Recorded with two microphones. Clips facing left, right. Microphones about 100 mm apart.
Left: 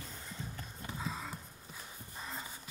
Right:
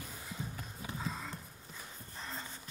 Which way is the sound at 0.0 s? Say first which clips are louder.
Right 2 dB; 5° right (ahead or behind).